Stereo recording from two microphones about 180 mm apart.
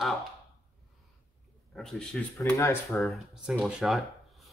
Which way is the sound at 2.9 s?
Centre (ahead or behind).